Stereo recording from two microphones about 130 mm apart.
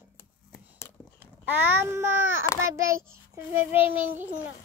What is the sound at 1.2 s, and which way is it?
A child's voice, 15° right (ahead or behind).